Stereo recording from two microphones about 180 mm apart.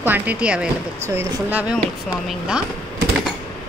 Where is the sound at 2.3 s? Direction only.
5° right (ahead or behind).